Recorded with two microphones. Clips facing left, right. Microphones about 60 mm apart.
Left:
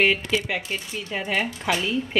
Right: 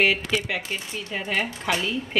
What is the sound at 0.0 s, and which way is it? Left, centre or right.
A woman's voice, centre.